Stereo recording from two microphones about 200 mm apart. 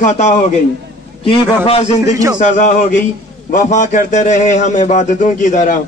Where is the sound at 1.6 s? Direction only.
30° left (ahead or behind).